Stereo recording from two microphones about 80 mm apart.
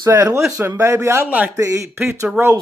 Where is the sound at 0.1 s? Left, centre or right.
Right.